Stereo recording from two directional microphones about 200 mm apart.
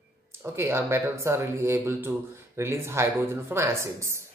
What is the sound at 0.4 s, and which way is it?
Speech, 15° right (ahead or behind).